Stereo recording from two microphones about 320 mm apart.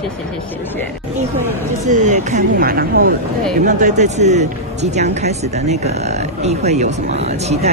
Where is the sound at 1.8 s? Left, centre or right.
Right.